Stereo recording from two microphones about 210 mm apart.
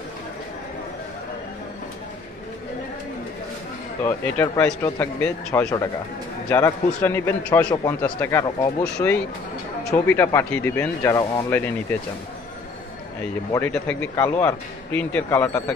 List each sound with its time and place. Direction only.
4.0 s a man's voice: 10° left (ahead or behind)
13.5 s a man's voice: 10° left (ahead or behind)